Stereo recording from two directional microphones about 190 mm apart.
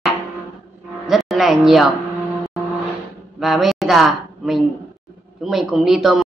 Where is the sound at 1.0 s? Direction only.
Centre (ahead or behind).